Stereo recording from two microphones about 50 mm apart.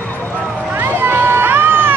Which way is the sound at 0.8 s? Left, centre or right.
Right.